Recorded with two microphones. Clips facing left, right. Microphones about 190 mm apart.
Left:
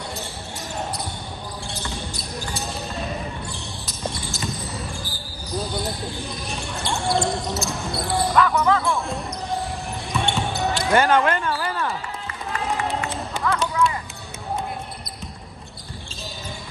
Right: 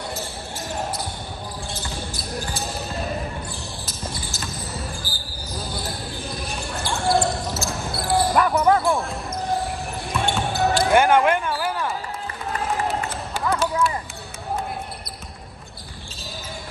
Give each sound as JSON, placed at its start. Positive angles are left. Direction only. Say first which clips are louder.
{"t": 1.9, "sound": "basketball bounce", "louder": "right 1 dB", "side_deg": 0}
{"t": 3.8, "sound": "basketball bounce", "louder": "left 5 dB", "side_deg": 0}
{"t": 8.3, "sound": "basketball bounce", "louder": "even", "side_deg": -35}
{"t": 10.1, "sound": "basketball bounce", "louder": "right 1 dB", "side_deg": 0}
{"t": 10.9, "sound": "a sound", "louder": "even", "side_deg": -10}